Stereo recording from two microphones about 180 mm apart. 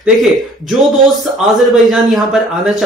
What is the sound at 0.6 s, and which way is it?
Mantra, centre (ahead or behind).